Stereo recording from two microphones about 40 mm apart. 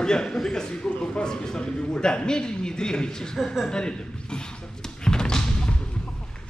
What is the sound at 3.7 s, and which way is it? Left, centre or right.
Speech, left.